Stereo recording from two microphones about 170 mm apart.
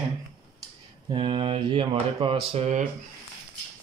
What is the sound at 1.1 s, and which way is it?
Speech, 30° right (ahead or behind).